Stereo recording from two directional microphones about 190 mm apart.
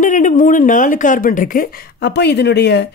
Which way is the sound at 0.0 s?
40° left (ahead or behind).